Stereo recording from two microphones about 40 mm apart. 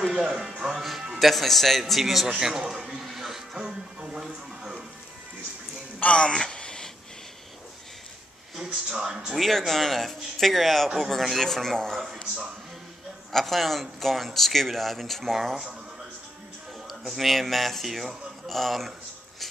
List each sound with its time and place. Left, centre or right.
0.1 s speech: centre
0.7 s speech: centre
2.4 s a sound: centre
3.6 s music: right
4.2 s a sound: centre
6.0 s a sound: left
8.6 s speech: centre
9.4 s speech: centre
13.3 s speech: centre
17.0 s speech: centre